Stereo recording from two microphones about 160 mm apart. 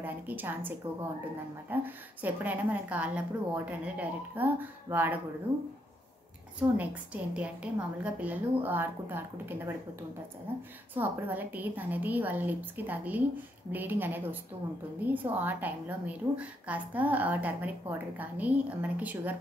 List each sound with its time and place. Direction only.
0.0 s a woman's voice: 10° right (ahead or behind)
6.8 s a woman's voice: 10° right (ahead or behind)
11.0 s a woman's voice: 10° right (ahead or behind)